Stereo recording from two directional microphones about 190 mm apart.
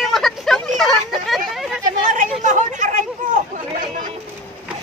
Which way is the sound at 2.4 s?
40° right (ahead or behind).